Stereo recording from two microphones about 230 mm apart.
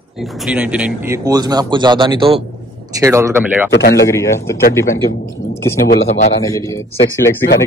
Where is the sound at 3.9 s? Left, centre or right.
Centre.